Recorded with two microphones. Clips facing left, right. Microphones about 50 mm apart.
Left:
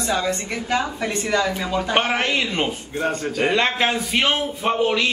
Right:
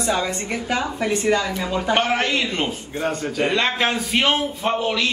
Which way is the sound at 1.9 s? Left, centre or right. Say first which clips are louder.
Left 1 dB; centre.